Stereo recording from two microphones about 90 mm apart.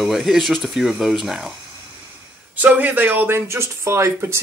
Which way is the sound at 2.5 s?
20° right (ahead or behind).